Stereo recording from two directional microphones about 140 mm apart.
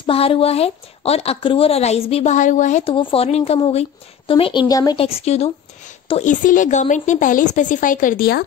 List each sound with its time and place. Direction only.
0.0 s a woman's voice: 40° left (ahead or behind)
2.3 s a woman's voice: 65° left (ahead or behind)
2.8 s a woman's voice: 40° left (ahead or behind)
4.9 s a woman's voice: 45° left (ahead or behind)
6.2 s a woman's voice: 70° left (ahead or behind)